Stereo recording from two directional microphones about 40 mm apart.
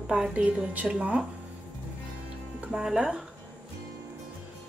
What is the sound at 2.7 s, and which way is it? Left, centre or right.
Speech, centre.